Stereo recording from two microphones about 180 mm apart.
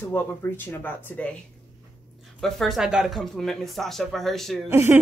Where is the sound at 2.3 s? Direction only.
Centre (ahead or behind).